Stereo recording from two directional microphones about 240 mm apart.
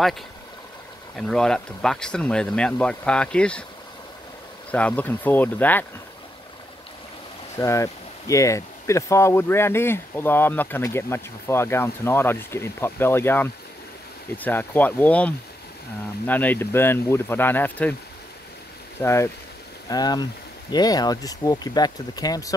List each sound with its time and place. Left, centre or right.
1.1 s speech: centre
4.6 s speech: centre
7.5 s speech: centre
18.9 s speech: centre